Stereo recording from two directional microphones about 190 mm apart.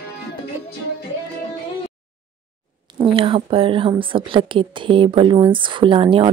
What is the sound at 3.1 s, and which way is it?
Speech, 30° right (ahead or behind).